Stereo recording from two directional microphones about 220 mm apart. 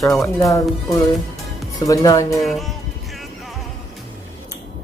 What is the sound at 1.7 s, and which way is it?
Speech, 15° left (ahead or behind).